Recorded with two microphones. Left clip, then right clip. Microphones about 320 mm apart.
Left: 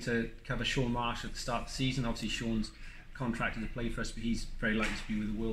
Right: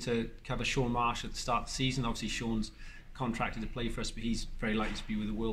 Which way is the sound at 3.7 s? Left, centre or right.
Centre.